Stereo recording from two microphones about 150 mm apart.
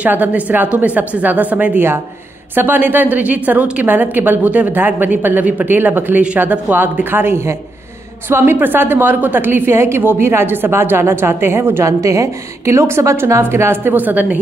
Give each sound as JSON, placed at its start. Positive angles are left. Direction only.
{"t": 0.0, "sound": "a woman's voice", "side_deg": -10}